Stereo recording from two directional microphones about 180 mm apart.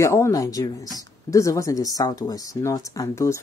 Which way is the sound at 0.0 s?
15° left (ahead or behind).